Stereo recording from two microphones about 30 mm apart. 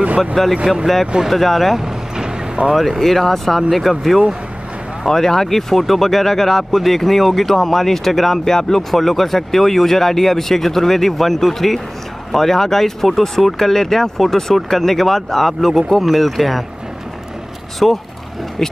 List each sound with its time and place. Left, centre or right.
0.4 s speech: centre
1.8 s vehicle: right
2.7 s speech: centre
3.0 s speech: centre
5.0 s speech: centre
17.8 s speech: centre